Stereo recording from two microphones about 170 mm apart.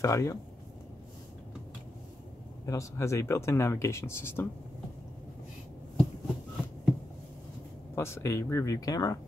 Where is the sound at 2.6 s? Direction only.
15° left (ahead or behind).